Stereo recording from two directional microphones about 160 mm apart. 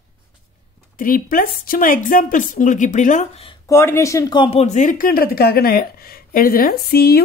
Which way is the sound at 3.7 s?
15° left (ahead or behind).